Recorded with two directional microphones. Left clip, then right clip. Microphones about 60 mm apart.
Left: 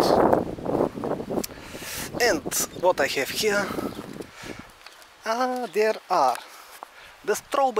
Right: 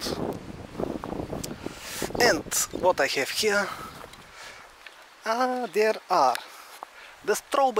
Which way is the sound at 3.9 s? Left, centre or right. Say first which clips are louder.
Left 5 dB; left.